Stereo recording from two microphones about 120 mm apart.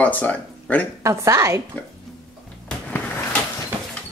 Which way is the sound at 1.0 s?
25° right (ahead or behind).